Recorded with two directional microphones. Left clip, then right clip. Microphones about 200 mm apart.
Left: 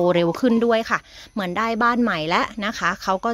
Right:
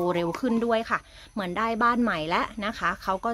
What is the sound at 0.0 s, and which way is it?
A woman's voice, 45° left (ahead or behind).